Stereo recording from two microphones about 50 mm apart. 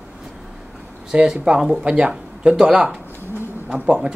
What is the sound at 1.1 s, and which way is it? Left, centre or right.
Speech, centre.